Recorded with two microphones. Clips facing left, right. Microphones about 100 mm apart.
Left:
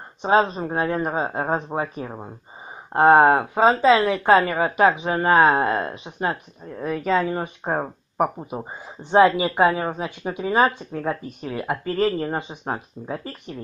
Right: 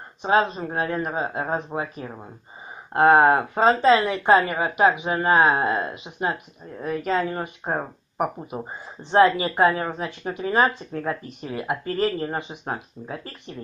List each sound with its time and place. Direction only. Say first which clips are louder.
0.2 s a woman's voice: left 2 dB; 25° left (ahead or behind)
3.3 s speech: left 1 dB; 10° left (ahead or behind)
3.9 s a woman's voice: left 1 dB; 25° left (ahead or behind)
7.1 s speech: left 3 dB; 15° left (ahead or behind)
8.4 s a woman's voice: left 1 dB; 10° left (ahead or behind); by 13.3 s 30° left (ahead or behind)